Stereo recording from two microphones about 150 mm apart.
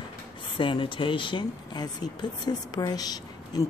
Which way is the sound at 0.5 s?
35° left (ahead or behind).